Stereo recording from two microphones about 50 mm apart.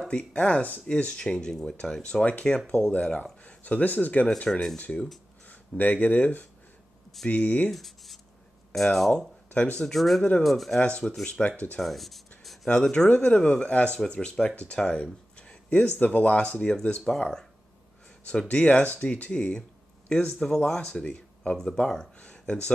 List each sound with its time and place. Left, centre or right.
0.1 s speech: left
4.5 s speech: centre
5.5 s speech: left
7.7 s speech: centre
9.5 s speech: left
9.9 s speech: centre
10.8 s speech: left
11.4 s speech: centre
12.8 s speech: centre
13.1 s speech: left
14.8 s a sound: centre
16.0 s speech: left
18.5 s speech: left
22.2 s a sound: left